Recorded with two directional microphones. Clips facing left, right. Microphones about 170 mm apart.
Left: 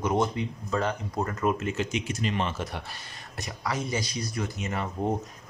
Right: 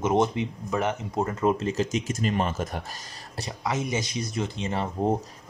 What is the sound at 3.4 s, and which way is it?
Speech, 25° right (ahead or behind).